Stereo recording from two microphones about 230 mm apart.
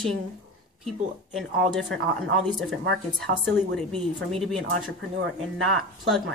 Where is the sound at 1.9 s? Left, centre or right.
Right.